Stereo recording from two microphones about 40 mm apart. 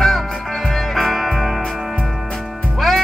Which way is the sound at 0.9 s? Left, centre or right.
Centre.